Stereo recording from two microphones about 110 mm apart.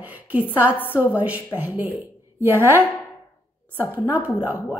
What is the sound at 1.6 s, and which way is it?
A woman's voice, 15° right (ahead or behind).